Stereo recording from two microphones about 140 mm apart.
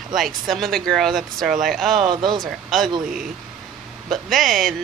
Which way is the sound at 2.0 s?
30° right (ahead or behind).